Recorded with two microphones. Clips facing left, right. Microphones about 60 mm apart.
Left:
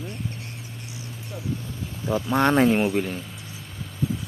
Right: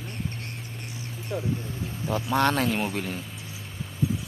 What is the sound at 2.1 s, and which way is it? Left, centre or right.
Speech, centre.